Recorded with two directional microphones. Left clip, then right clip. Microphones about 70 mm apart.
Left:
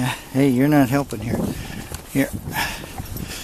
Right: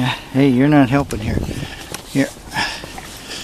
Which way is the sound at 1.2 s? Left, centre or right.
Centre.